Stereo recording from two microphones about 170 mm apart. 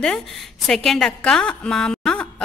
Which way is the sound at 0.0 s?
Centre (ahead or behind).